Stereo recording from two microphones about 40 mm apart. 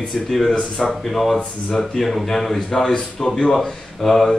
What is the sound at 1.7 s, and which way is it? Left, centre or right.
Speech, centre.